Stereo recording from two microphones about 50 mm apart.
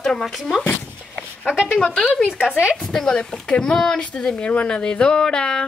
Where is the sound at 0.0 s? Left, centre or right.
Centre.